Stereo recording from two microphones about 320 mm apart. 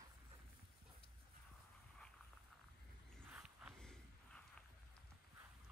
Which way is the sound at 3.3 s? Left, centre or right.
Centre.